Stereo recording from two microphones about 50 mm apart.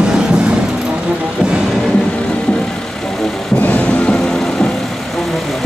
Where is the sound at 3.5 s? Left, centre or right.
Left.